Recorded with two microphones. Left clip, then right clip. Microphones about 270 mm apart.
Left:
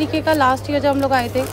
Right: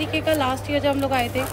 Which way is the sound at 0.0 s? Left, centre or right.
Centre.